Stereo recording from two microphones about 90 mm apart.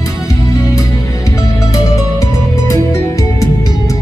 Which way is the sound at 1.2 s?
35° left (ahead or behind).